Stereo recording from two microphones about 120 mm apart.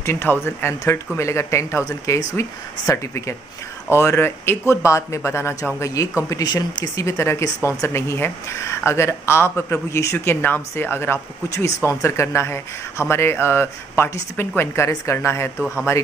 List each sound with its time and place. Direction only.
0.0 s speech: 20° left (ahead or behind)